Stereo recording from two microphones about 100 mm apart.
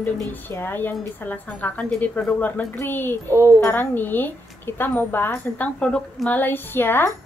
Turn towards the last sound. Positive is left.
turn(degrees=20)  # may be behind; listen again after turning